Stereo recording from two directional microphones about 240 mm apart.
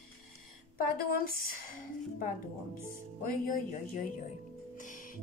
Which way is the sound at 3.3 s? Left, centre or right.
Left.